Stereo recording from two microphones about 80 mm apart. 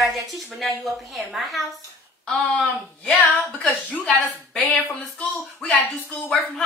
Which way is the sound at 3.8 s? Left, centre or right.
Centre.